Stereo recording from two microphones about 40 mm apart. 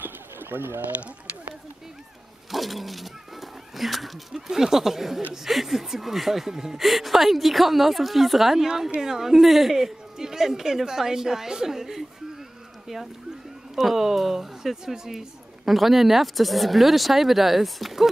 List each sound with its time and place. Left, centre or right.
0.0 s pigeon: right
2.5 s speech: centre
4.5 s a woman's voice: centre
6.8 s a woman's voice: centre
12.8 s a sound: centre
13.7 s speech: centre